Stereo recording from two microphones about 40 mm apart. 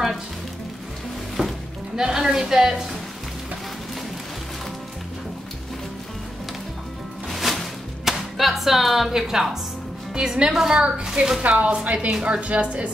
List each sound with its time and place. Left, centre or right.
2.0 s a woman's voice: centre
7.3 s music: centre
10.1 s a woman's voice: centre
11.4 s a woman's voice: right